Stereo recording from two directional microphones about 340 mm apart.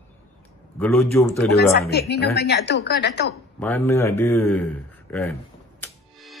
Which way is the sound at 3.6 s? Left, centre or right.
Centre.